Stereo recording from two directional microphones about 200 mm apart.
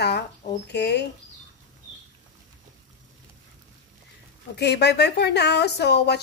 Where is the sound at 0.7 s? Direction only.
60° left (ahead or behind).